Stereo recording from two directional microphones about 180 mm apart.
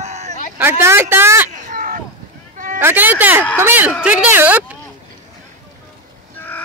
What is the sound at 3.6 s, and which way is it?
Speech, 10° right (ahead or behind).